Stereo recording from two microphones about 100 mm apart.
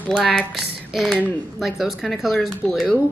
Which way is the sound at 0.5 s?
Centre (ahead or behind).